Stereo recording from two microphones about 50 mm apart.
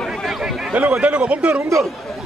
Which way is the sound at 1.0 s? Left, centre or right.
Right.